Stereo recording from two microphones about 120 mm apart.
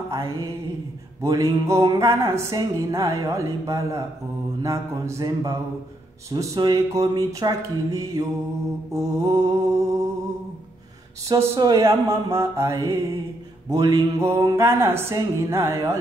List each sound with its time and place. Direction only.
0.1 s music: 25° right (ahead or behind)
11.2 s music: 25° right (ahead or behind)